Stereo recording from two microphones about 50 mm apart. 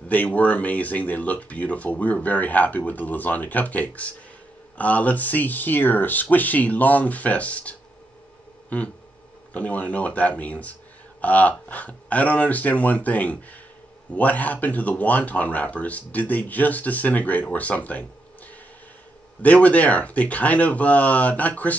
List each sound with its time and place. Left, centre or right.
0.1 s speech: left
8.6 s a sound: left
9.5 s speech: left
19.4 s speech: left